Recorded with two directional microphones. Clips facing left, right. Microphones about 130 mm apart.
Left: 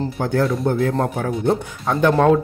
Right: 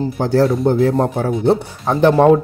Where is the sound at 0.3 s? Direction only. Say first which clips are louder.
Right 6 dB; 35° right (ahead or behind).